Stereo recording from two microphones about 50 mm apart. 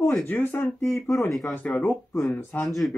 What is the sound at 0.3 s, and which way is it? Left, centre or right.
Speech, left.